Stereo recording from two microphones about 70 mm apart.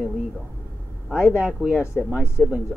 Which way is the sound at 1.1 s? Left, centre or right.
Centre.